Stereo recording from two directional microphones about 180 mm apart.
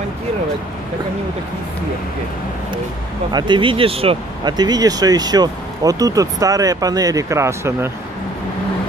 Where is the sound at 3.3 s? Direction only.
25° right (ahead or behind).